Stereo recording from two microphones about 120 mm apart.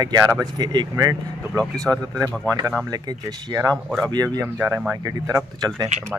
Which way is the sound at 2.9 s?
30° right (ahead or behind).